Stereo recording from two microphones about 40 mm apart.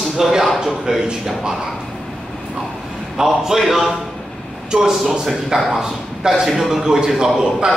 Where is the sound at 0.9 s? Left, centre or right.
Centre.